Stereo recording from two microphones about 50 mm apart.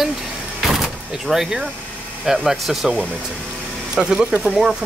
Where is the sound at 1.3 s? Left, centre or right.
Centre.